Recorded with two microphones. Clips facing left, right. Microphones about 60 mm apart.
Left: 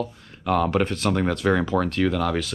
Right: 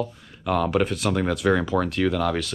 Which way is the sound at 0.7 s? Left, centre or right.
Centre.